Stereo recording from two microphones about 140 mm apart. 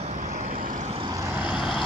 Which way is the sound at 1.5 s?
35° left (ahead or behind).